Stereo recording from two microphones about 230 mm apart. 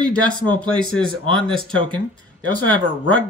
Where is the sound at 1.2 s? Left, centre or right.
Right.